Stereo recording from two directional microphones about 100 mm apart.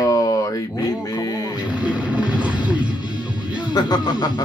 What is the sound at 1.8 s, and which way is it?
Music, 10° right (ahead or behind).